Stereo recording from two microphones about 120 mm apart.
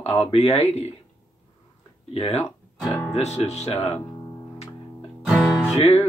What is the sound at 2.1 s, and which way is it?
Speech, 55° left (ahead or behind).